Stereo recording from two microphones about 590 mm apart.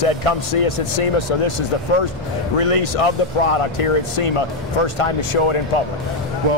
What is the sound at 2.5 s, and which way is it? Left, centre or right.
Speech, left.